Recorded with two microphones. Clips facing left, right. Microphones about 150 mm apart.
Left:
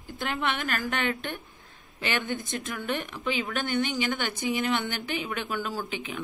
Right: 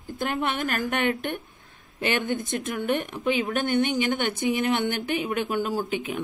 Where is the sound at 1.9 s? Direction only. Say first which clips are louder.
Right 4 dB; 50° right (ahead or behind).